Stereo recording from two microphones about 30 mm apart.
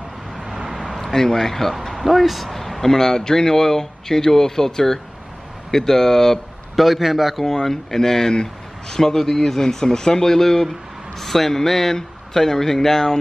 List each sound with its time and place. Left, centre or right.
0.4 s vehicle: centre
0.7 s vehicle: centre
1.1 s a man's voice: centre
6.8 s a man's voice: centre
7.6 s a man's voice: centre